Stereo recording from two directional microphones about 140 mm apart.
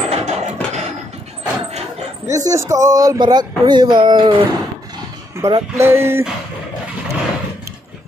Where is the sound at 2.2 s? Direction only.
25° right (ahead or behind).